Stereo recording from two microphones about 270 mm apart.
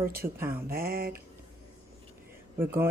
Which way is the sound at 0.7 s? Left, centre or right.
Right.